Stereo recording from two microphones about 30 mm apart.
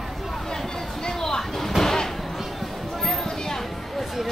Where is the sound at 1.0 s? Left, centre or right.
Left.